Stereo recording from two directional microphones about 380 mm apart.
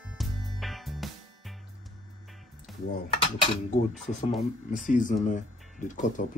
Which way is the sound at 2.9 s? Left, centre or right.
Left.